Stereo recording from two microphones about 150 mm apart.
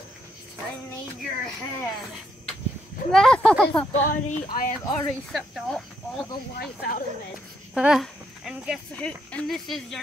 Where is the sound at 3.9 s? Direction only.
50° left (ahead or behind).